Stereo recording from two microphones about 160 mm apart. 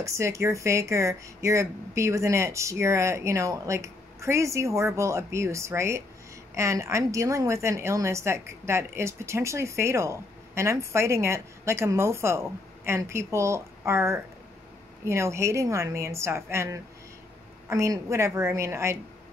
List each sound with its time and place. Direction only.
0.0 s a woman's voice: 20° right (ahead or behind)